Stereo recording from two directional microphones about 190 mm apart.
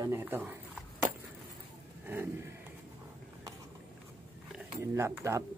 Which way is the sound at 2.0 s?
10° right (ahead or behind).